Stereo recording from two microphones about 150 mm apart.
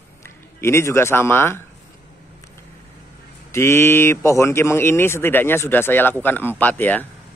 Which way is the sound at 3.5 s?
15° left (ahead or behind).